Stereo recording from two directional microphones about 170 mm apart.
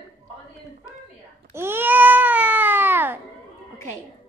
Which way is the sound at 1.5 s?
15° right (ahead or behind).